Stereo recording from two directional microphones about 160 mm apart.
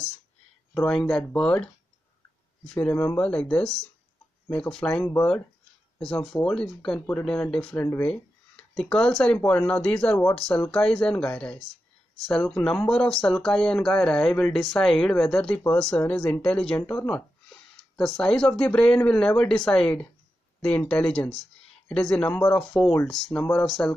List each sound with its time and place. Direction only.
0.7 s speech: 5° left (ahead or behind)
2.7 s speech: 10° left (ahead or behind)